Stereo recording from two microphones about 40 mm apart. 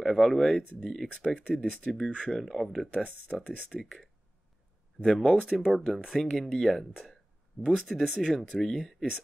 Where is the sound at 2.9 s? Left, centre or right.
Left.